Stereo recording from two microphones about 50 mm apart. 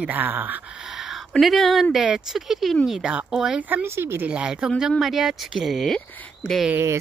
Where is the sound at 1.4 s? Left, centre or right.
Centre.